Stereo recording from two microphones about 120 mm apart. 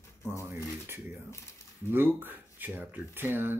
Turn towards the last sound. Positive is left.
turn(degrees=-15)  # may be behind; listen again after turning